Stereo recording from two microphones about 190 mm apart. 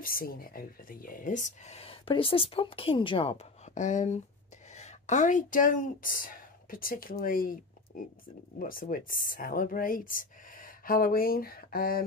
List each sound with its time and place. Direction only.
0.0 s speech: 50° left (ahead or behind)